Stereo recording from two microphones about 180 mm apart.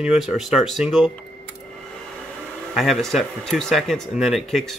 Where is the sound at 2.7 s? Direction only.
Centre (ahead or behind).